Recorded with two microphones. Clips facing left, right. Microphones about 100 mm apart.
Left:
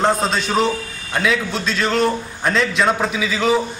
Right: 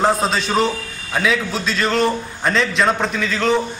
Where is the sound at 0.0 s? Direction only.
Centre (ahead or behind).